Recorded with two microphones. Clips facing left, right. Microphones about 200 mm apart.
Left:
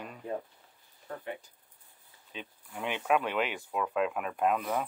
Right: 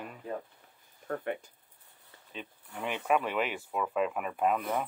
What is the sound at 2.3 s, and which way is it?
Speech, centre (ahead or behind).